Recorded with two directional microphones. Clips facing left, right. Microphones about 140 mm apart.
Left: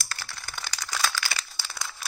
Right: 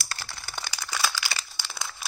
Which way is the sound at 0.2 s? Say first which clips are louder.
Right 1 dB; 10° right (ahead or behind).